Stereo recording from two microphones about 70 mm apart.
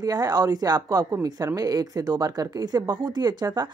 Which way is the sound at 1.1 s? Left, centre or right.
Right.